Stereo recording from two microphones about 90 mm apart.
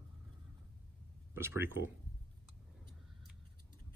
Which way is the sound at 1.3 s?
25° right (ahead or behind).